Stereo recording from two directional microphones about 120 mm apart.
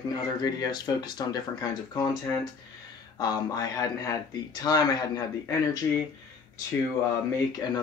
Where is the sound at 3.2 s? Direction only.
30° left (ahead or behind).